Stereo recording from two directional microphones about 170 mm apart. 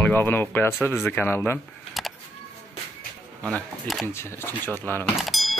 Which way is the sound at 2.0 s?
Centre (ahead or behind).